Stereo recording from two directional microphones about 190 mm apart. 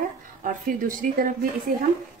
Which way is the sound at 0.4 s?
45° right (ahead or behind).